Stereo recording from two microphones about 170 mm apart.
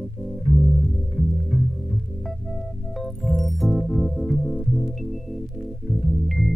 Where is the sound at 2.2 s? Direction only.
Centre (ahead or behind).